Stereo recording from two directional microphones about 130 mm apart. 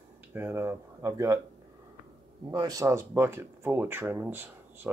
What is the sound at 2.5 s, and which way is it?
Speech, 30° right (ahead or behind).